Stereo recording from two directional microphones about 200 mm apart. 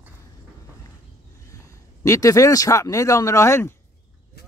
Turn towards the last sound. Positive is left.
turn(degrees=15)  # may be behind; listen again after turning